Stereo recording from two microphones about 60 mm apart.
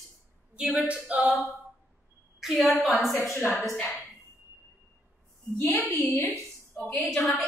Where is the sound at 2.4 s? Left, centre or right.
Centre.